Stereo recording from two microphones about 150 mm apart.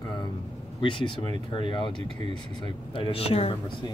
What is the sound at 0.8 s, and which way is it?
Speech, 35° left (ahead or behind).